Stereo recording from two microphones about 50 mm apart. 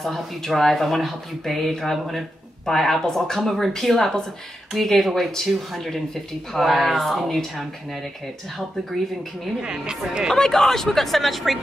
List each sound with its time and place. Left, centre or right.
0.0 s speech: centre
9.6 s speech: centre
10.3 s speech: centre